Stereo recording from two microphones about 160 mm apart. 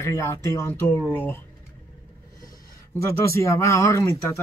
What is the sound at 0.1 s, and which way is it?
Speech, 20° left (ahead or behind).